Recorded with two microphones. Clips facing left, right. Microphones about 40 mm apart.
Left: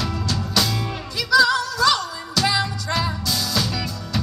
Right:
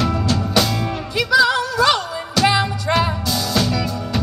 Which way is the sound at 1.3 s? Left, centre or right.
Right.